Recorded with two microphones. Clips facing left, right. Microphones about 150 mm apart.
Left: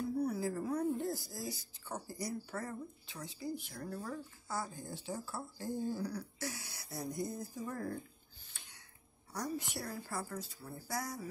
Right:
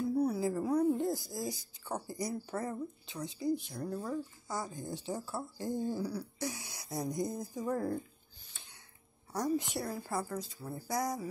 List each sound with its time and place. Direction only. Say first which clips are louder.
0.2 s a woman's voice: right 4 dB; 15° right (ahead or behind)
9.3 s a woman's voice: right 7 dB; 25° right (ahead or behind)